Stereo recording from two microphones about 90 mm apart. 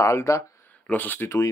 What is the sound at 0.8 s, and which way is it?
Speech, 20° left (ahead or behind).